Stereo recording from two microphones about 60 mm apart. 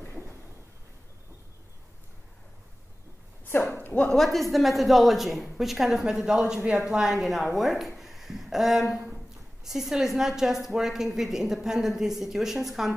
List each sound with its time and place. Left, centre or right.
3.9 s speech: centre
4.2 s a woman's voice: centre